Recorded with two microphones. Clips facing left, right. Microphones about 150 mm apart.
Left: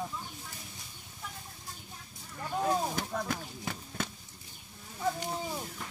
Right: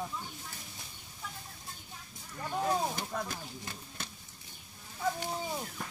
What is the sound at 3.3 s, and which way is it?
Speech, 90° left.